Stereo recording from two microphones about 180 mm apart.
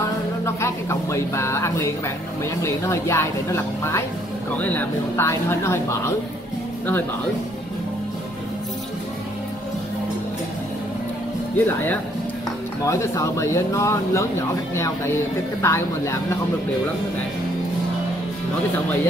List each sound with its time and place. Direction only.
0.6 s a woman's voice: 15° left (ahead or behind)
11.5 s speech: 10° left (ahead or behind)
15.6 s speech: 15° left (ahead or behind)